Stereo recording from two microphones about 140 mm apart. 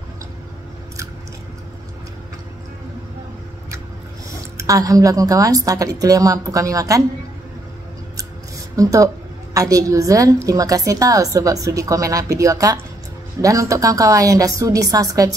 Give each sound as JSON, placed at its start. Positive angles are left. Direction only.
{"t": 4.6, "sound": "a woman's voice", "side_deg": -25}
{"t": 8.7, "sound": "a woman's voice", "side_deg": -25}